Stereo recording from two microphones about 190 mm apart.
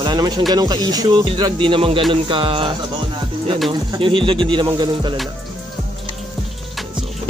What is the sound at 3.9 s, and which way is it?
Speech, 25° right (ahead or behind).